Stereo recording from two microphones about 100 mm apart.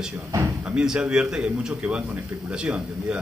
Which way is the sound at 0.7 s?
5° right (ahead or behind).